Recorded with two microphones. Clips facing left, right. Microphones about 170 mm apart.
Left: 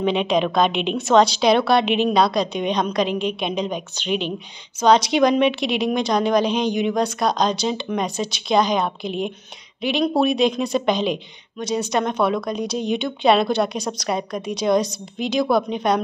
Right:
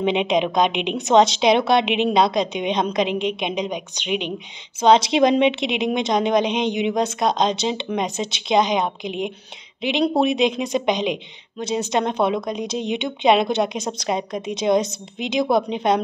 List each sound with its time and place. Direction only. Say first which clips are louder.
0.0 s a woman's voice: even; 20° right (ahead or behind)
4.7 s a woman's voice: right 1 dB; 25° right (ahead or behind)